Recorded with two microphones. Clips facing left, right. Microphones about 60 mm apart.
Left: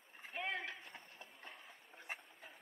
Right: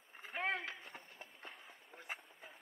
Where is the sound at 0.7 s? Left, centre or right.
Centre.